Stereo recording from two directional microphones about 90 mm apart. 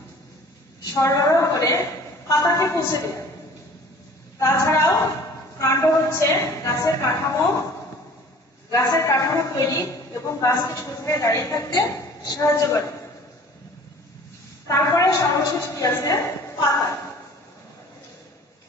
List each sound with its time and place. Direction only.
0.9 s a woman's voice: 35° left (ahead or behind)
4.4 s a woman's voice: 30° left (ahead or behind)
8.6 s a woman's voice: 35° left (ahead or behind)
14.7 s a woman's voice: 40° left (ahead or behind)